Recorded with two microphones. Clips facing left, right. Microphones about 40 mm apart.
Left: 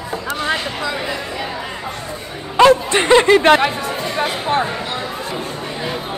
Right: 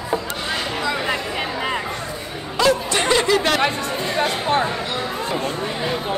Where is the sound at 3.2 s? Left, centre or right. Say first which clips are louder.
Left 7 dB; left.